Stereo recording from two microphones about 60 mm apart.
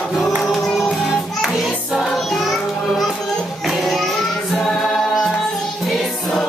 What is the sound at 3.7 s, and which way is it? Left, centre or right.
Music, centre.